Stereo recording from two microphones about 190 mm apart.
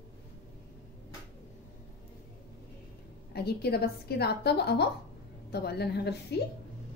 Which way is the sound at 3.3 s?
60° left (ahead or behind).